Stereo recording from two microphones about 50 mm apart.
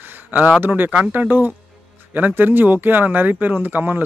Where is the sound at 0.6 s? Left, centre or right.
Right.